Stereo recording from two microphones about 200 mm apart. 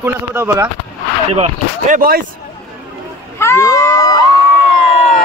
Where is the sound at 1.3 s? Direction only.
35° right (ahead or behind).